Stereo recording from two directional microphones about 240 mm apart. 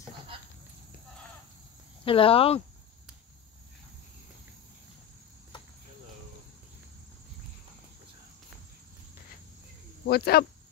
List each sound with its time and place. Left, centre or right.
2.0 s speech: left
5.5 s cricket: centre
10.0 s speech: left